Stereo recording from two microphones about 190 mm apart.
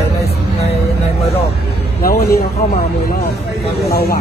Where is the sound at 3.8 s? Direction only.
55° left (ahead or behind).